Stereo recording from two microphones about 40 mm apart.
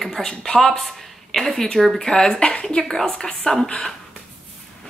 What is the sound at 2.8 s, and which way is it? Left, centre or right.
Speech, centre.